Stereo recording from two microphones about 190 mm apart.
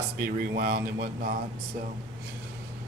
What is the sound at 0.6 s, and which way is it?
Speech, 55° right (ahead or behind).